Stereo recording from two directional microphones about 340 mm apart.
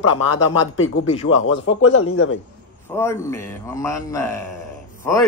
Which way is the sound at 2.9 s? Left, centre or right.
Centre.